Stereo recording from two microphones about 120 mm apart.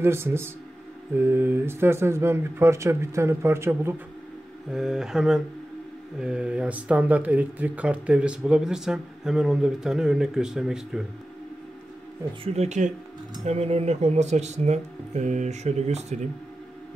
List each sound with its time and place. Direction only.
0.0 s speech: 20° right (ahead or behind)
4.6 s speech: 5° right (ahead or behind)
12.5 s speech: 75° right (ahead or behind)
13.5 s speech: 60° right (ahead or behind)